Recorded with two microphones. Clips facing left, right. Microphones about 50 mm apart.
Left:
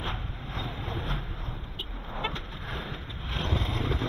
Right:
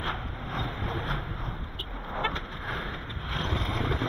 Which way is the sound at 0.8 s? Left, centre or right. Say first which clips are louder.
Right 3 dB; centre.